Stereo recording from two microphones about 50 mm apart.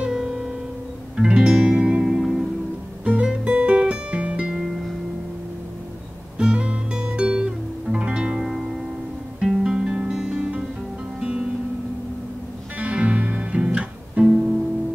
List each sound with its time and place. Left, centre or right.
0.0 s music: centre
3.1 s guitar: right
4.6 s music: centre
6.3 s music: right
8.5 s music: centre
12.7 s music: right